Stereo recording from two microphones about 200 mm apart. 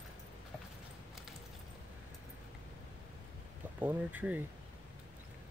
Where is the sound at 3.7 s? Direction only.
10° right (ahead or behind).